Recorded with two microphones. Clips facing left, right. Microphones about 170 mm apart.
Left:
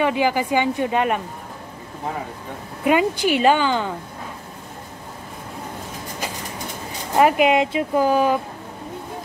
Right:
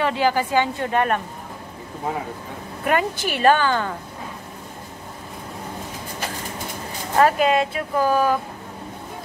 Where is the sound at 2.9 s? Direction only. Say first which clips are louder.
Left 4 dB; 15° left (ahead or behind).